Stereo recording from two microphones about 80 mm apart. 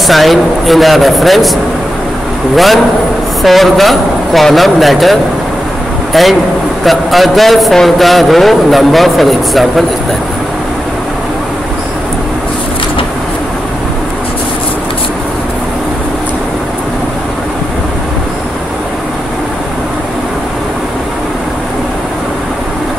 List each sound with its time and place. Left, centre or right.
0.0 s a man's voice: centre
6.8 s a man's voice: centre